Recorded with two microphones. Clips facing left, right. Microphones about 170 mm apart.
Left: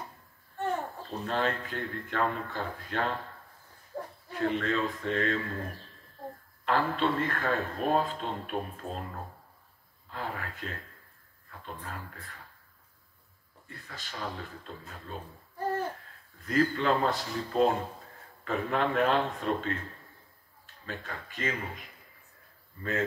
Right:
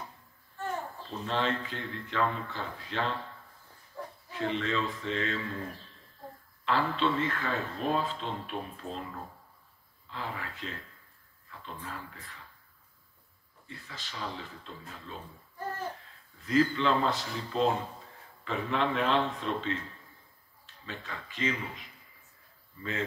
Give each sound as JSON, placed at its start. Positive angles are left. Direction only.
{"t": 1.2, "sound": "a man's voice", "side_deg": 50}
{"t": 3.9, "sound": "a sound", "side_deg": 55}
{"t": 4.3, "sound": "a man's voice", "side_deg": 50}
{"t": 10.1, "sound": "a man's voice", "side_deg": 50}
{"t": 13.7, "sound": "a man's voice", "side_deg": 50}
{"t": 16.3, "sound": "a man's voice", "side_deg": 50}